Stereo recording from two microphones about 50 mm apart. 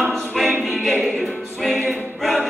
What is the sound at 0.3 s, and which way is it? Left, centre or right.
A capella, centre.